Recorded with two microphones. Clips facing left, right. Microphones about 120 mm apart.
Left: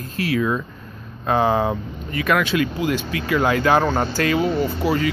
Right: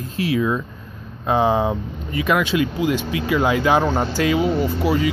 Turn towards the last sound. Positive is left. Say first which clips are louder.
# right 1 dB
turn(degrees=-15)  # may be behind; listen again after turning